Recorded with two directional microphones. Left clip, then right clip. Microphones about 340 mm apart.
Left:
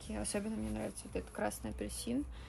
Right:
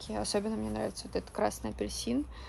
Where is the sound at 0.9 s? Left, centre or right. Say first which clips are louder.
Right 7 dB; right.